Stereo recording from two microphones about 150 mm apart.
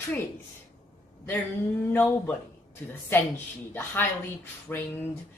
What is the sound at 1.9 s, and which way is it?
Speech, 15° left (ahead or behind).